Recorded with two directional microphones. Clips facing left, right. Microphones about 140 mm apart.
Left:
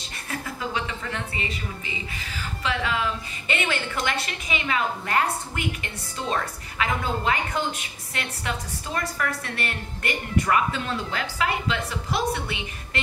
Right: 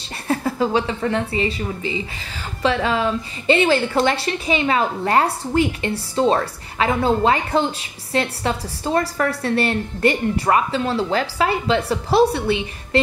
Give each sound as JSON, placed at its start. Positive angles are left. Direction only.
{"t": 0.3, "sound": "a woman's voice", "side_deg": -35}